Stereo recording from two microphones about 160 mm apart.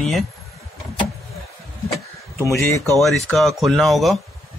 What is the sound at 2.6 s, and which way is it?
Speech, 15° left (ahead or behind).